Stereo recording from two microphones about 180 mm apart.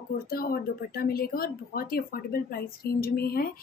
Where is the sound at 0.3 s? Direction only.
55° left (ahead or behind).